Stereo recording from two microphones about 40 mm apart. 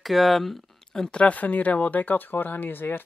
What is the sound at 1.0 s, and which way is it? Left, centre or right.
Speech, left.